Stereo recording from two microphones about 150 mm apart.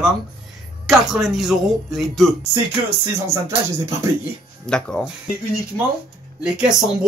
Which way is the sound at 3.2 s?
20° right (ahead or behind).